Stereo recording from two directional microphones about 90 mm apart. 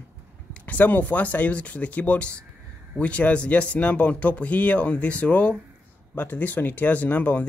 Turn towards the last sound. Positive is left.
turn(degrees=20)  # may be behind; listen again after turning